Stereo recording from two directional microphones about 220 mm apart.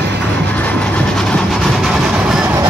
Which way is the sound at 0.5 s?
5° left (ahead or behind).